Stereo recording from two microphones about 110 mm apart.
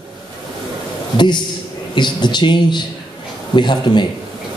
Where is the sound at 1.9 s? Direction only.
45° left (ahead or behind).